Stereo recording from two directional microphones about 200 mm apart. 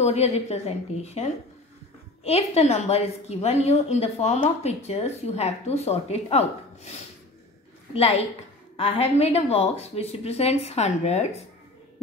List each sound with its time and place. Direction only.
0.0 s a woman's voice: 30° left (ahead or behind)